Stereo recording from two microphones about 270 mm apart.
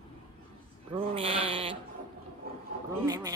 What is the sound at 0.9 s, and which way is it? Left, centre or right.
Sheep, right.